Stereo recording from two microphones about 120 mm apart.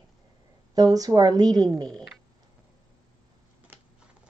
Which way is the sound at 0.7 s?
30° right (ahead or behind).